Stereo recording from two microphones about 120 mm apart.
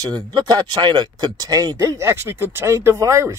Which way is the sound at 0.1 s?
35° right (ahead or behind).